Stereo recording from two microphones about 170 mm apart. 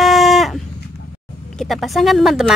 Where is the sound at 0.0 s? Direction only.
Centre (ahead or behind).